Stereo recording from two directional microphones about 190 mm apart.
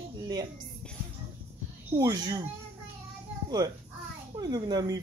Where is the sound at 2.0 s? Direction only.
20° right (ahead or behind).